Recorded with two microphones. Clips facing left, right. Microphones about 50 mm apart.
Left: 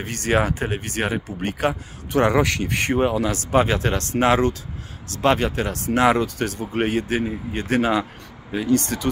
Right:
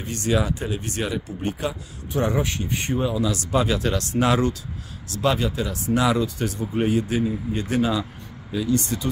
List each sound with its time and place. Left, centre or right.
0.0 s speech: left
3.5 s speech: left